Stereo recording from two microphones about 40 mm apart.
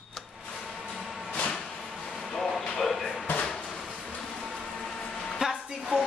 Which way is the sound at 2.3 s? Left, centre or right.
Centre.